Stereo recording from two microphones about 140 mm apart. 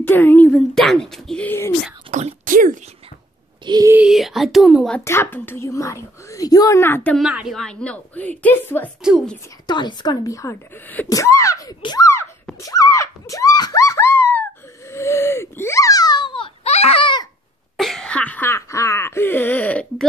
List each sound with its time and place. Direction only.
0.0 s a woman's voice: 15° left (ahead or behind)
2.0 s speech: 55° right (ahead or behind); by 2.8 s 70° right (ahead or behind)
3.6 s speech: 30° right (ahead or behind)
3.9 s speech: 5° right (ahead or behind)
5.0 s speech: 15° left (ahead or behind)
7.2 s a woman's voice: 5° right (ahead or behind); by 8.9 s 15° left (ahead or behind)
9.0 s speech: 5° right (ahead or behind)
9.7 s speech: 30° left (ahead or behind)
12.6 s a sound: 25° left (ahead or behind)
14.9 s wheeze: 20° left (ahead or behind); by 16.7 s 35° left (ahead or behind)
16.7 s baby cry: 45° left (ahead or behind)
17.7 s cough: centre (ahead or behind)